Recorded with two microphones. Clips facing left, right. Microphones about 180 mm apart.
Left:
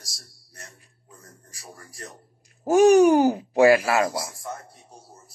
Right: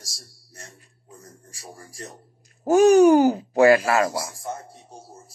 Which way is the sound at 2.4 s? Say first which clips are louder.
Right 1 dB; 15° left (ahead or behind).